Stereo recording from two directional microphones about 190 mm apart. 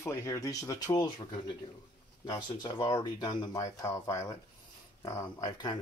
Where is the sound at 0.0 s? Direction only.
15° left (ahead or behind).